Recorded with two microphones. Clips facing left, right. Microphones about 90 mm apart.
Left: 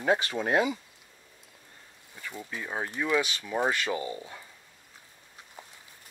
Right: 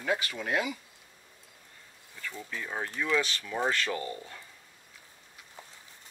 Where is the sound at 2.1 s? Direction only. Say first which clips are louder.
Left 1 dB; 15° left (ahead or behind).